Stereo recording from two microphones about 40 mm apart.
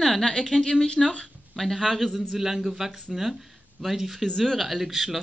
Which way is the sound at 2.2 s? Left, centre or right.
Centre.